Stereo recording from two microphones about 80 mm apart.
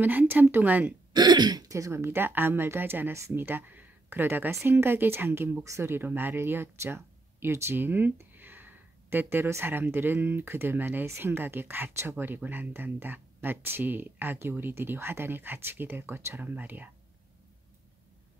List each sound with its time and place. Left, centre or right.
0.0 s speech: right
1.1 s speech: right
3.4 s speech: right